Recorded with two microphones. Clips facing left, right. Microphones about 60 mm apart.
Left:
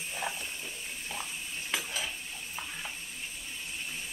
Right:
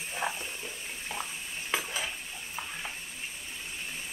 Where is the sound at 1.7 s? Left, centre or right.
Centre.